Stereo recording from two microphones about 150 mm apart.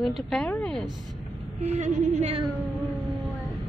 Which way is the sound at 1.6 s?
50° right (ahead or behind).